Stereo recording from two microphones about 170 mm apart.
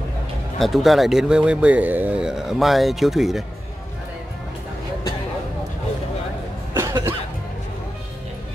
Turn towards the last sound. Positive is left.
turn(degrees=-15)  # may be behind; listen again after turning